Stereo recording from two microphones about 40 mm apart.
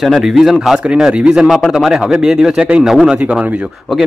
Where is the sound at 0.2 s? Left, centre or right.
Centre.